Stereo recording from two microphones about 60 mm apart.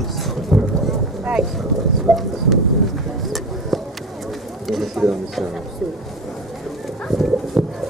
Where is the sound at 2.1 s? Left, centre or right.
Centre.